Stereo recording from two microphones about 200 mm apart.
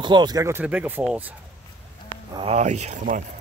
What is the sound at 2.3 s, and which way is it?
Speech, 30° right (ahead or behind).